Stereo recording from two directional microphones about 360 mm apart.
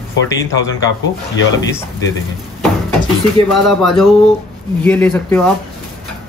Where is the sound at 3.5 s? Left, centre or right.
Centre.